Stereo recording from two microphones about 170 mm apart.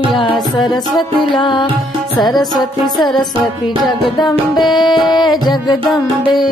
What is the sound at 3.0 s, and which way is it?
Music, 25° left (ahead or behind).